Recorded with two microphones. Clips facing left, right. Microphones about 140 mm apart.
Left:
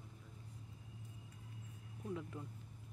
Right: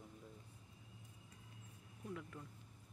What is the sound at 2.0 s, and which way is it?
Speech, 25° left (ahead or behind).